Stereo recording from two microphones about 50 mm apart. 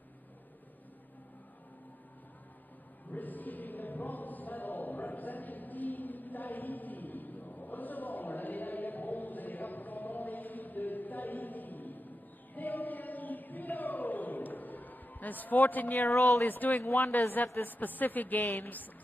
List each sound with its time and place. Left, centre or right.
3.1 s music: left
12.5 s chant: left
16.0 s speech: left
16.4 s a woman's voice: left
16.8 s a woman's voice: left
17.1 s a woman's voice: left